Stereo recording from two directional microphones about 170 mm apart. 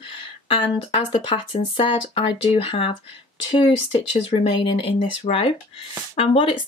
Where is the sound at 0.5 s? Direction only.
30° left (ahead or behind).